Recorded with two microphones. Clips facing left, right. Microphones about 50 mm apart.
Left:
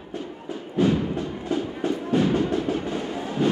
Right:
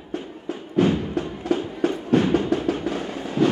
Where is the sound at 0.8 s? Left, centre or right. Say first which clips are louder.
Right 2 dB; right.